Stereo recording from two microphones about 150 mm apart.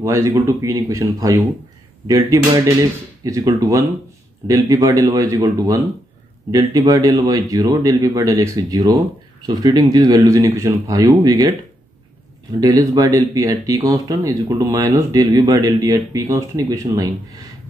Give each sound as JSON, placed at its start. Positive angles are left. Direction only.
{"t": 0.0, "sound": "speech", "side_deg": -20}
{"t": 12.5, "sound": "speech", "side_deg": -25}